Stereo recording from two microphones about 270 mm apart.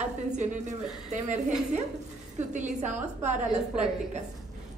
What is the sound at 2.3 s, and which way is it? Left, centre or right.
Speech, right.